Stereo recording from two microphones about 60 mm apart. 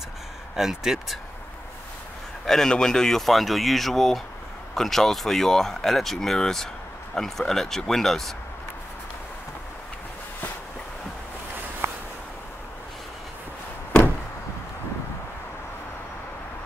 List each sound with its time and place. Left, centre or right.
0.6 s speech: centre
2.4 s speech: centre
11.8 s a sound: right